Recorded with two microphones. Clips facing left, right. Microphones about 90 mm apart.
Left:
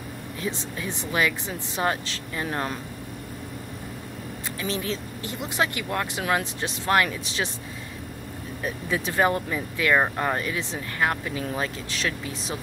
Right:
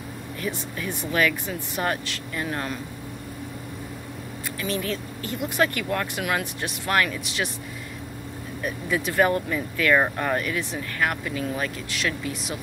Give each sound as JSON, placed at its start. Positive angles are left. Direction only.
{"t": 0.4, "sound": "speech", "side_deg": 25}
{"t": 4.6, "sound": "speech", "side_deg": 25}
{"t": 8.6, "sound": "speech", "side_deg": 30}